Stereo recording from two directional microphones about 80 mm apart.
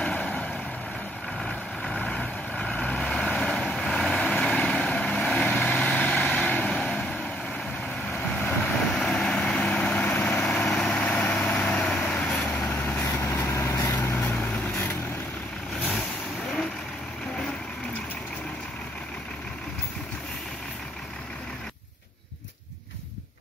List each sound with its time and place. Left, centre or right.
0.2 s vehicle: centre
1.4 s vehicle: centre
10.1 s vehicle: left
10.4 s vehicle: centre
10.9 s vehicle: centre
12.7 s vehicle: left
14.1 s vehicle: left